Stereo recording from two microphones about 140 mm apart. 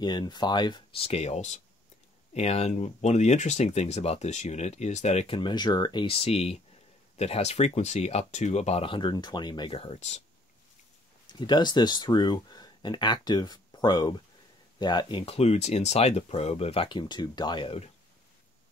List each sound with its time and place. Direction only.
0.0 s speech: 30° left (ahead or behind)
9.8 s speech: 50° left (ahead or behind)
11.2 s speech: 35° left (ahead or behind)